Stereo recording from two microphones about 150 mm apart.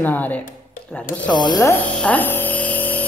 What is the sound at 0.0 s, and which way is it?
Speech, 10° left (ahead or behind).